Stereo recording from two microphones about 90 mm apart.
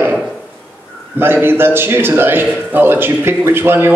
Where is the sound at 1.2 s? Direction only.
25° right (ahead or behind).